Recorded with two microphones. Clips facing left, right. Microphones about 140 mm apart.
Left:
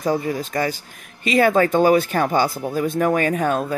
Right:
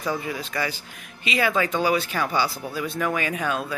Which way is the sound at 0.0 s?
40° left (ahead or behind).